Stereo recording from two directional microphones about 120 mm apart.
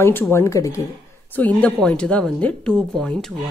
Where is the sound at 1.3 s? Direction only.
15° left (ahead or behind).